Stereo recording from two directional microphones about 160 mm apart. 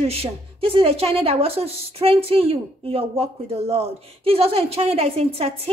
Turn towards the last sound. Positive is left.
turn(degrees=-40)  # may be behind; listen again after turning